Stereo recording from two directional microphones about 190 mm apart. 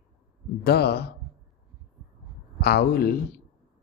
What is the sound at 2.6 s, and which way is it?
Speech, 55° left (ahead or behind).